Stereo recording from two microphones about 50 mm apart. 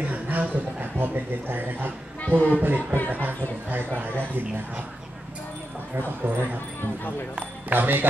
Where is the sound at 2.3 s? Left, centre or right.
Right.